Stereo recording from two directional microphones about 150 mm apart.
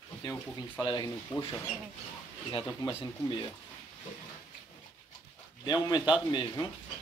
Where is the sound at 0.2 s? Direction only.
25° left (ahead or behind).